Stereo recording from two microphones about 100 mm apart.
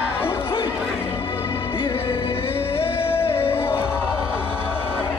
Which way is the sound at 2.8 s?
65° left (ahead or behind).